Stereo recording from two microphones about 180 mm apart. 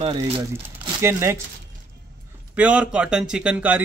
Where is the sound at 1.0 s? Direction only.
15° right (ahead or behind).